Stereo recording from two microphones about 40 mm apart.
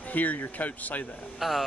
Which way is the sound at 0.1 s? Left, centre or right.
Left.